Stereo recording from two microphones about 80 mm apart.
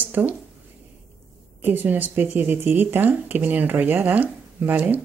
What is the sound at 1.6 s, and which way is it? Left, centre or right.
Speech, right.